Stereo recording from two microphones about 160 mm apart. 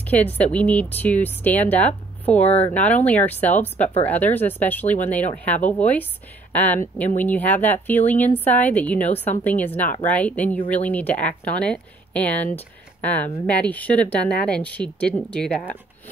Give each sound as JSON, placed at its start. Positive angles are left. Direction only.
{"t": 0.1, "sound": "speech", "side_deg": 10}
{"t": 2.4, "sound": "speech", "side_deg": 40}
{"t": 2.7, "sound": "speech", "side_deg": 10}